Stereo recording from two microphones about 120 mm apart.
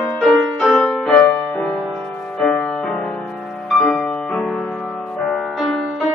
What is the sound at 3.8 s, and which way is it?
Music, 5° left (ahead or behind).